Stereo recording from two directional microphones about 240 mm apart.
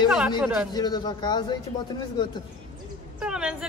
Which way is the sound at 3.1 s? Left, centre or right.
Centre.